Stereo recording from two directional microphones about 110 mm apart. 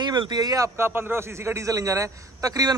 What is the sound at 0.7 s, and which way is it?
A man's voice, 20° right (ahead or behind).